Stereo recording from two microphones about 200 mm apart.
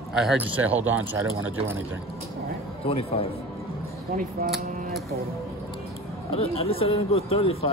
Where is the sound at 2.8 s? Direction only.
30° left (ahead or behind).